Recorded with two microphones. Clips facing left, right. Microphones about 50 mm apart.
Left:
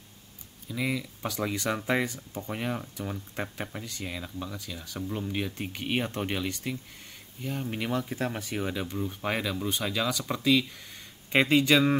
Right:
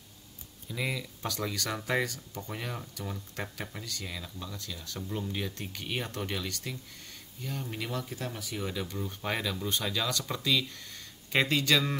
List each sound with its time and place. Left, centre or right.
0.7 s speech: centre
8.1 s speech: left
8.6 s speech: left
8.9 s speech: centre